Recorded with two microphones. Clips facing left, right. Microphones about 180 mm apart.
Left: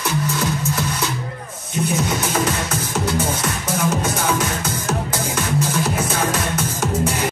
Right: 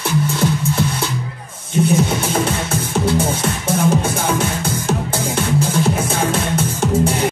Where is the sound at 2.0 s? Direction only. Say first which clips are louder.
Right 2 dB; 30° right (ahead or behind).